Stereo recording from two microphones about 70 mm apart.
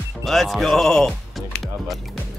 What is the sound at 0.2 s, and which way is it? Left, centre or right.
Speech, centre.